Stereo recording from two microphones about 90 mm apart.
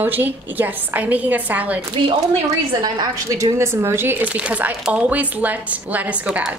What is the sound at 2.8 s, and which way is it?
A woman's voice, 50° right (ahead or behind).